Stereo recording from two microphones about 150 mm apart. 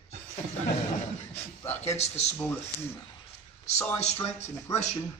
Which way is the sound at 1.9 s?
45° left (ahead or behind).